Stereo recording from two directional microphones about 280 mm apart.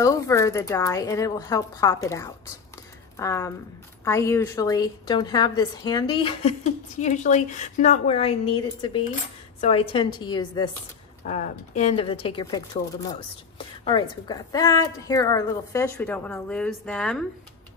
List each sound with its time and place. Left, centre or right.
0.0 s a woman's voice: centre